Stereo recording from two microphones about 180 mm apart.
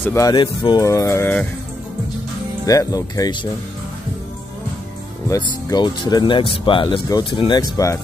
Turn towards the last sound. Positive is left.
turn(degrees=20)  # may be behind; listen again after turning